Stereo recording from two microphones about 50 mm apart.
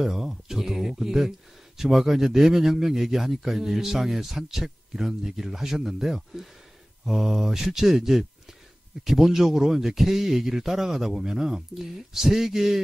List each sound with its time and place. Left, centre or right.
0.0 s speech: centre